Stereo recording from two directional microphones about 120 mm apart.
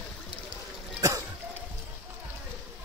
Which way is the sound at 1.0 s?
30° right (ahead or behind).